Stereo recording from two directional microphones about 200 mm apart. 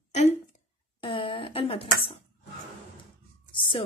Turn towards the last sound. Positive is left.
turn(degrees=25)  # may be behind; listen again after turning